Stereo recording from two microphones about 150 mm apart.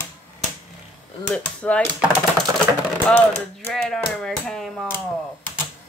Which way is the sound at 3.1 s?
5° left (ahead or behind).